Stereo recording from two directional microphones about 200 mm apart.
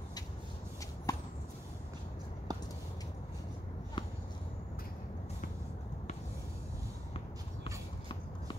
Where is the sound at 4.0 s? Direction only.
25° left (ahead or behind).